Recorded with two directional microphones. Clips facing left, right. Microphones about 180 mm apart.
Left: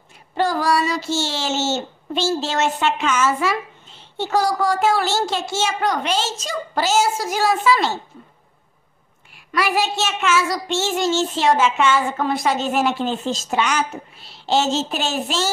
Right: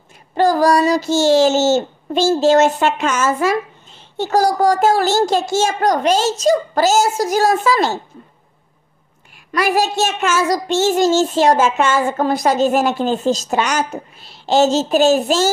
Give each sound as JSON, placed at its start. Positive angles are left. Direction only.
{"t": 0.3, "sound": "a child's voice", "side_deg": -40}
{"t": 9.5, "sound": "a child's voice", "side_deg": -40}